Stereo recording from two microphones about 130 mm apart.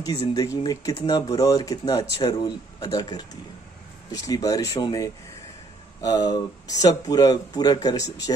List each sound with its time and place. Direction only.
0.3 s speech: 30° left (ahead or behind)